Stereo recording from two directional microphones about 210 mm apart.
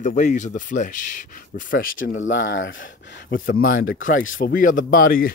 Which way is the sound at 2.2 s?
65° left (ahead or behind).